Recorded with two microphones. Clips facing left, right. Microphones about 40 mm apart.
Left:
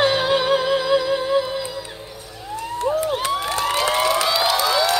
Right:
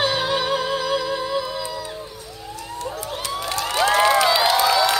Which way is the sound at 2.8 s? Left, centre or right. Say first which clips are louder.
Left 9 dB; left.